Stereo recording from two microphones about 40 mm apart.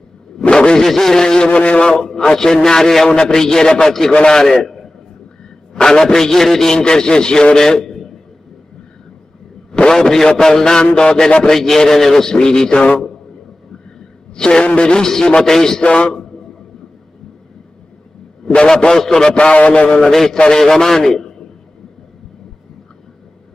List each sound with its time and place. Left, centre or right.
0.5 s a sound: left
0.7 s a man's voice: centre; by 2.0 s left
2.3 s a man's voice: centre
5.7 s a man's voice: centre
9.7 s a man's voice: centre
11.5 s a man's voice: centre
14.3 s a man's voice: centre
18.7 s a man's voice: centre
19.3 s a man's voice: left
20.0 s a man's voice: centre